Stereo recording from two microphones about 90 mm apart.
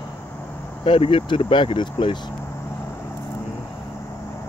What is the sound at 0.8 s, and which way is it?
Speech, 80° left.